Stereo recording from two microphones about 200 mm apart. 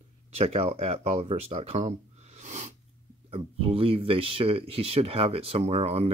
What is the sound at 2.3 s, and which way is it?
Sneeze, 35° right (ahead or behind).